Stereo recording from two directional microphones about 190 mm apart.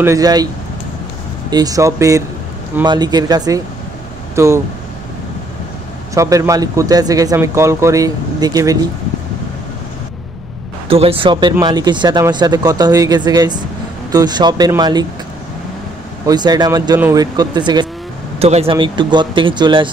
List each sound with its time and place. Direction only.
0.0 s speech: 15° right (ahead or behind)
1.5 s speech: 20° right (ahead or behind)
6.1 s speech: 15° right (ahead or behind)
10.9 s speech: 30° right (ahead or behind)
16.3 s speech: 20° right (ahead or behind)